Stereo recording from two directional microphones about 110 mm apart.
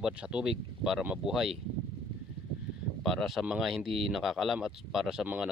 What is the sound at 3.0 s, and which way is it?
Speech, centre (ahead or behind).